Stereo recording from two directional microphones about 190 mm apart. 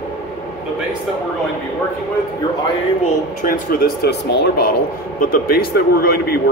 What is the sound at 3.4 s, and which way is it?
Speech, 50° left (ahead or behind).